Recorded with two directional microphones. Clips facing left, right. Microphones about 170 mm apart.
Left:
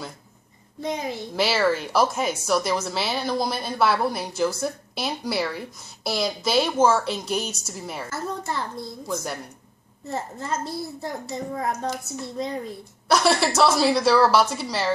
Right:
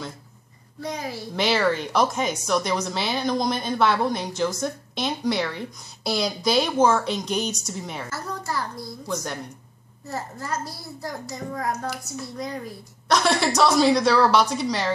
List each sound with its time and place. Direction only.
0.7 s a child's voice: 20° left (ahead or behind)
1.3 s speech: 5° left (ahead or behind)
8.1 s a child's voice: 25° left (ahead or behind)
9.0 s speech: 5° left (ahead or behind)
10.0 s a child's voice: 25° left (ahead or behind)
13.1 s speech: 5° left (ahead or behind)